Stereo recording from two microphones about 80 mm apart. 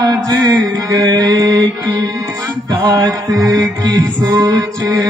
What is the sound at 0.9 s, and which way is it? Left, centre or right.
Mantra, right.